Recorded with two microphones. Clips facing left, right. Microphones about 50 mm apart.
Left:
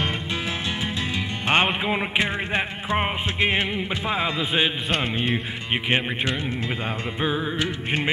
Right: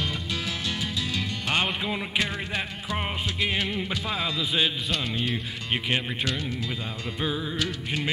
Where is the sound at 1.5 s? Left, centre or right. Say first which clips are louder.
Left 6 dB; left.